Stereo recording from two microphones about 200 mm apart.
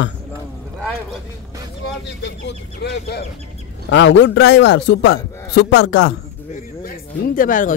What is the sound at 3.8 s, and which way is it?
A man's voice, 70° left (ahead or behind).